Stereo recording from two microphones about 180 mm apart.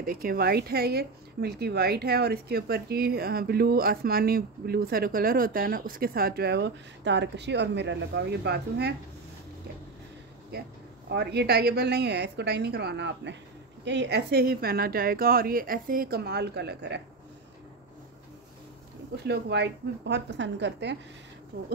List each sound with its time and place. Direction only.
0.0 s a woman's voice: 55° right (ahead or behind)
10.5 s a woman's voice: 60° right (ahead or behind)
19.1 s a woman's voice: 65° right (ahead or behind)